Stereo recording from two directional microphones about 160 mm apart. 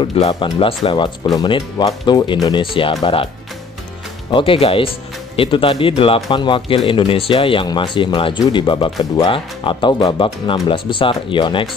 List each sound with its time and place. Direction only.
0.0 s speech: 30° left (ahead or behind)
4.3 s speech: 35° left (ahead or behind)